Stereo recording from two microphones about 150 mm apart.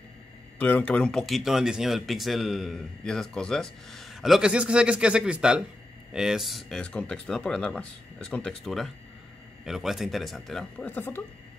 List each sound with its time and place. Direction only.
0.6 s speech: 10° left (ahead or behind)